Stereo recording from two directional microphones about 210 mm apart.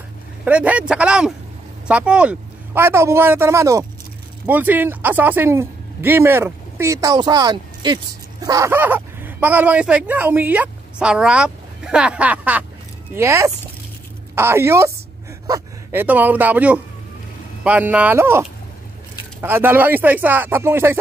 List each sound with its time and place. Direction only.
0.5 s speech: 5° right (ahead or behind)